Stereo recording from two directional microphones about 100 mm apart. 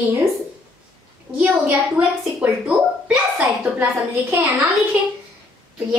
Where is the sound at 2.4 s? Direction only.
10° right (ahead or behind).